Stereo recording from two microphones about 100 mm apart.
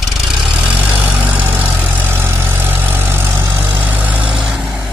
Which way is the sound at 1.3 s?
15° right (ahead or behind).